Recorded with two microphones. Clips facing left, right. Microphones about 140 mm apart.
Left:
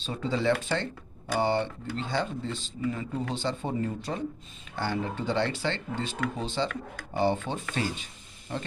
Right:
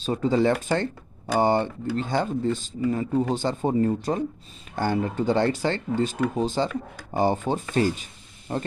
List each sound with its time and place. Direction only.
0.0 s speech: 45° right (ahead or behind)